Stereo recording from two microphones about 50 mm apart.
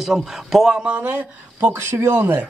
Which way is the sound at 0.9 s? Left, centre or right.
Right.